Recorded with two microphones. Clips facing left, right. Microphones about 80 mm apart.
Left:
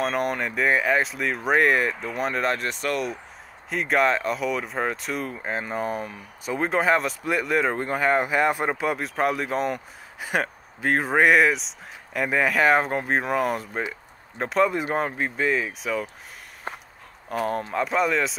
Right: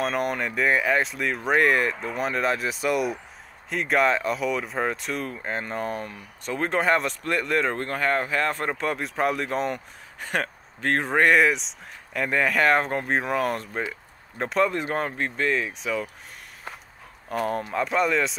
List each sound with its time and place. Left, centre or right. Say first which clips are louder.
0.0 s speech: left 1 dB; centre
16.7 s walk: left 5 dB; left
17.3 s speech: even; centre